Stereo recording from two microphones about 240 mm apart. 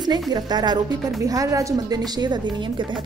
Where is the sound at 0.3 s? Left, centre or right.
Centre.